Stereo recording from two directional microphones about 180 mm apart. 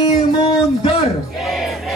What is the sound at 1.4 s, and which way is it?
Battle cry, centre (ahead or behind).